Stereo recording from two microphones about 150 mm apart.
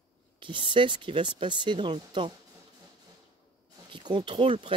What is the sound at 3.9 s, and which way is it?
Speech, 30° right (ahead or behind).